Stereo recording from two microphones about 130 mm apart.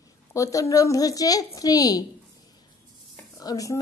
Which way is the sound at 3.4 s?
25° left (ahead or behind).